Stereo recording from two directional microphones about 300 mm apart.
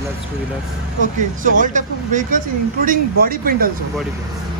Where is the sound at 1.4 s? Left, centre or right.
Right.